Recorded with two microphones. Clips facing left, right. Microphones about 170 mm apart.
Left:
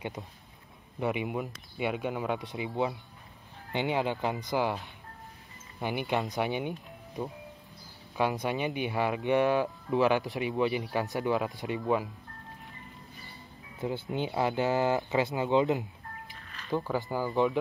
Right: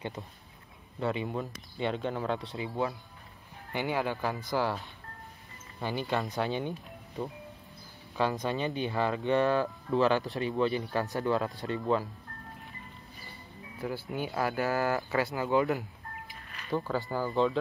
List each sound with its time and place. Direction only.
0.9 s speech: 15° left (ahead or behind)
5.8 s speech: 15° left (ahead or behind)
8.2 s speech: 15° left (ahead or behind)
13.7 s speech: 20° left (ahead or behind)